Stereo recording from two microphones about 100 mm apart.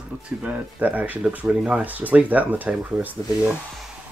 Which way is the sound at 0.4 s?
15° right (ahead or behind).